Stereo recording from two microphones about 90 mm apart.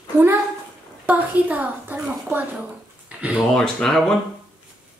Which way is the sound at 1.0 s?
20° right (ahead or behind).